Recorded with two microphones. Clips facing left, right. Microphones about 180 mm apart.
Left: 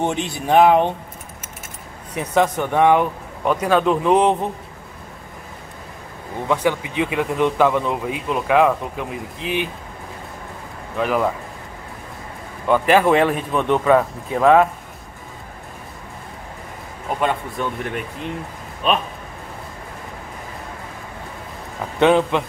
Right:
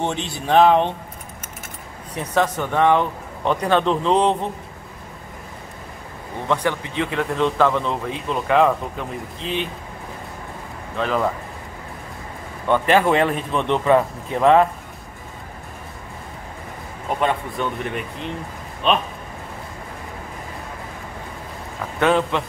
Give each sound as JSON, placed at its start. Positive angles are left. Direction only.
{"t": 0.0, "sound": "speech", "side_deg": 10}
{"t": 2.1, "sound": "speech", "side_deg": 10}
{"t": 6.4, "sound": "speech", "side_deg": 10}
{"t": 11.0, "sound": "speech", "side_deg": 10}
{"t": 12.6, "sound": "speech", "side_deg": 5}
{"t": 17.2, "sound": "speech", "side_deg": 0}
{"t": 22.0, "sound": "speech", "side_deg": 15}